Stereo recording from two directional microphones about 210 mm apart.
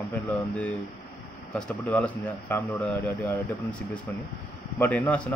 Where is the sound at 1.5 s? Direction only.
10° left (ahead or behind).